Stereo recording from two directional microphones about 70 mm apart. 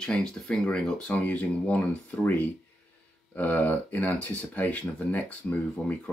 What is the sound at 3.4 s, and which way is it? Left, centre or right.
Speech, left.